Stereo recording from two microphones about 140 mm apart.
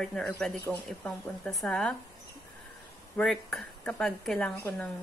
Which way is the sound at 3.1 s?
5° left (ahead or behind).